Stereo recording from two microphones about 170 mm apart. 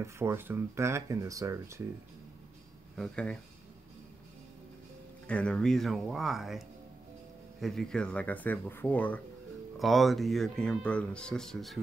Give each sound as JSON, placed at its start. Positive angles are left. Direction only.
{"t": 0.0, "sound": "speech", "side_deg": -15}
{"t": 3.0, "sound": "speech", "side_deg": 5}
{"t": 5.2, "sound": "speech", "side_deg": 5}
{"t": 7.6, "sound": "speech", "side_deg": 5}